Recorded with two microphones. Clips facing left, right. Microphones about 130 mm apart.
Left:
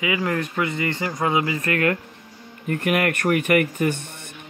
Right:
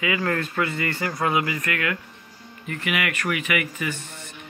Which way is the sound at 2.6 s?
50° left (ahead or behind).